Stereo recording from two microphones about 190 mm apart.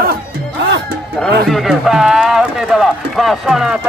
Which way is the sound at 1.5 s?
Centre (ahead or behind).